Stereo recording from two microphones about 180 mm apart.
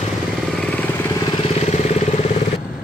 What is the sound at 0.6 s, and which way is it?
Vehicle, 10° left (ahead or behind).